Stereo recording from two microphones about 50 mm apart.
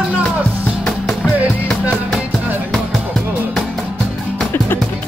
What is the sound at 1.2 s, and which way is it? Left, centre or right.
Music, centre.